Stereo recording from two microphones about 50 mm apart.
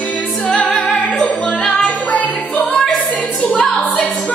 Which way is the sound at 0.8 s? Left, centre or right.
Left.